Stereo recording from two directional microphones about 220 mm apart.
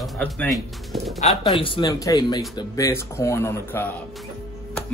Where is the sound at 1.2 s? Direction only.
30° left (ahead or behind); by 3.9 s 10° left (ahead or behind).